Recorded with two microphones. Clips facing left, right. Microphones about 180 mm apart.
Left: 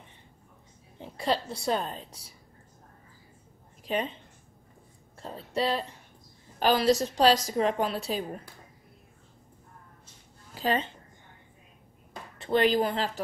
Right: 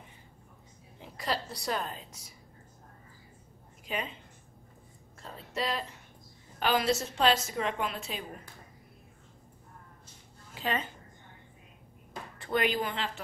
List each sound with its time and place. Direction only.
0.9 s speech: 30° left (ahead or behind)
3.8 s a woman's voice: 35° left (ahead or behind)
5.2 s a woman's voice: 30° left (ahead or behind)
10.5 s a woman's voice: 35° left (ahead or behind)
12.4 s a woman's voice: 30° left (ahead or behind)